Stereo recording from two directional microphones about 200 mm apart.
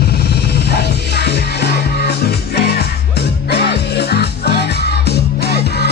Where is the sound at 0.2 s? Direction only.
55° left (ahead or behind).